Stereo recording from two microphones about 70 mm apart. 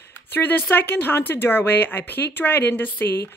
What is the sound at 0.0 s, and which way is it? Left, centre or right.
Speech, left.